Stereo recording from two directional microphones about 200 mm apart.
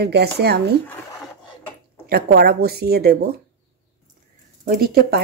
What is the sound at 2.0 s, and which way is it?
A woman's voice, 50° right (ahead or behind).